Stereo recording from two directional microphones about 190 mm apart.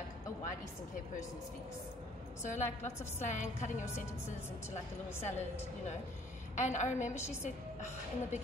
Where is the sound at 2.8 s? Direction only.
15° left (ahead or behind).